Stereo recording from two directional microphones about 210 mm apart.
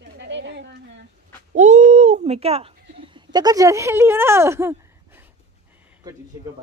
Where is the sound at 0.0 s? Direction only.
55° right (ahead or behind).